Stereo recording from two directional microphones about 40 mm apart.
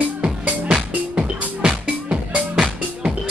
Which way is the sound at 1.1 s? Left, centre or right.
Right.